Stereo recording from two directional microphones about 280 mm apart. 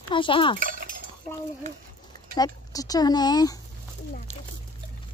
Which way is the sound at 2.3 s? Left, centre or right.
Centre.